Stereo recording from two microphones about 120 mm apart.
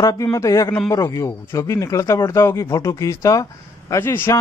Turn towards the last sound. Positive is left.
turn(degrees=20)  # may be behind; listen again after turning